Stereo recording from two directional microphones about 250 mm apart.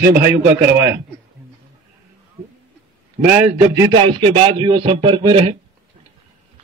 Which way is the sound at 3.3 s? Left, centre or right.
Centre.